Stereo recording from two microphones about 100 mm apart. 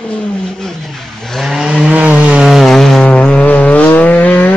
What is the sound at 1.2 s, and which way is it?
Chainsaw, centre (ahead or behind).